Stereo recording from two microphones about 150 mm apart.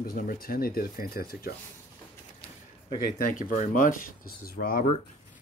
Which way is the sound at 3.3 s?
60° left (ahead or behind).